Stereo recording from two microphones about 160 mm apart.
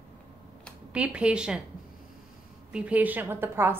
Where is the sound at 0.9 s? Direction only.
5° right (ahead or behind).